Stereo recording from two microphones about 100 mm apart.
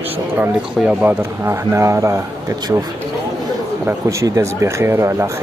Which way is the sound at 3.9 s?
30° right (ahead or behind).